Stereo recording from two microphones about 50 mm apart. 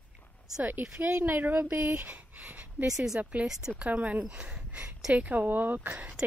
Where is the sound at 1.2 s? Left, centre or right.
Right.